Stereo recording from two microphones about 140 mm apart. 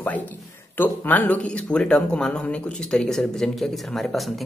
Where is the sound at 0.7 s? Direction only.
15° left (ahead or behind).